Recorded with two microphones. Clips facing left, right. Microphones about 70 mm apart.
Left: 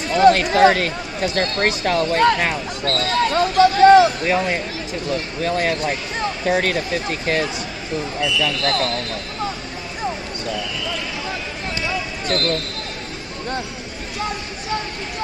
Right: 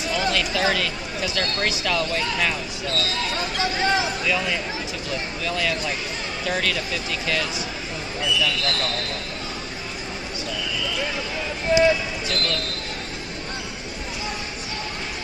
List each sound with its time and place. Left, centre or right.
0.0 s speech: left
12.3 s speech: left